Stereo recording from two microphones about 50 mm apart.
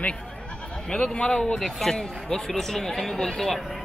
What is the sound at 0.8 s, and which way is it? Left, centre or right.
Speech, left.